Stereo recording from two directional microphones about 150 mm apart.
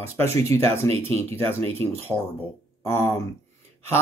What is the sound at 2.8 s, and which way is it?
Speech, 15° left (ahead or behind).